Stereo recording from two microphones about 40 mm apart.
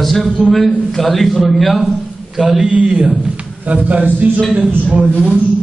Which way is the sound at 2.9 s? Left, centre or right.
Right.